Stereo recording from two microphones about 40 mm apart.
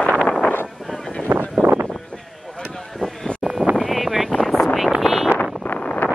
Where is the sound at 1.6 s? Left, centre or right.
Right.